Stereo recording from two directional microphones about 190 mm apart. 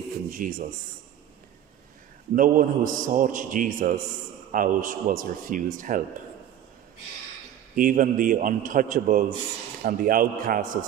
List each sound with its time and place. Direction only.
0.3 s a man's voice: 45° right (ahead or behind)
2.3 s a man's voice: 45° right (ahead or behind)
7.7 s a man's voice: 45° right (ahead or behind)